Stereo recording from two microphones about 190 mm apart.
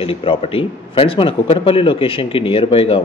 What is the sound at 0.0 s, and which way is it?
A man's voice, 30° left (ahead or behind).